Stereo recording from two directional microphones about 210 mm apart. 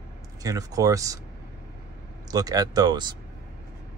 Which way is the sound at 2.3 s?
15° right (ahead or behind).